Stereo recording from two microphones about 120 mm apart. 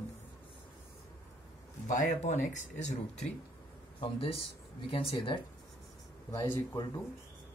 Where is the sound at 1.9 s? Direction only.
90° left.